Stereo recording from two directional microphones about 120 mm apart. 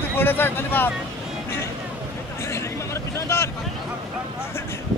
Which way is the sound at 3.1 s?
25° left (ahead or behind).